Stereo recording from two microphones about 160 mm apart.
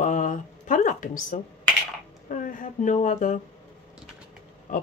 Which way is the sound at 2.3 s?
55° left (ahead or behind).